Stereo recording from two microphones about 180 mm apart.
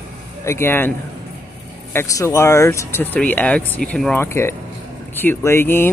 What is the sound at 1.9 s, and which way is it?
Speech, 15° left (ahead or behind).